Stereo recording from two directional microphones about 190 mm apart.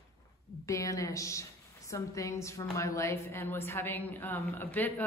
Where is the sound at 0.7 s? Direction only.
15° left (ahead or behind).